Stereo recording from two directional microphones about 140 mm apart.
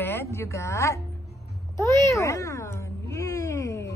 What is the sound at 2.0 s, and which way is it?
Cat, 20° left (ahead or behind).